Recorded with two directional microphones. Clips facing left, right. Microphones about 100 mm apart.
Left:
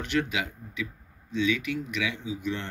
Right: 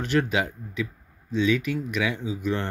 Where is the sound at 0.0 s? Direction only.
40° right (ahead or behind).